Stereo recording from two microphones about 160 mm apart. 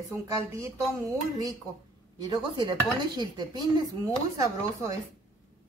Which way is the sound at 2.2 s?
30° right (ahead or behind).